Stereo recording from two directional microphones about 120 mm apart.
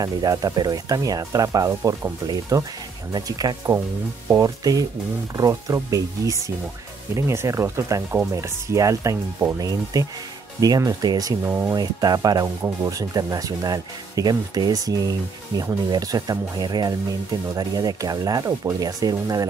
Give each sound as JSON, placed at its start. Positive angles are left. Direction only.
{"t": 0.0, "sound": "speech", "side_deg": -30}
{"t": 11.8, "sound": "speech", "side_deg": -35}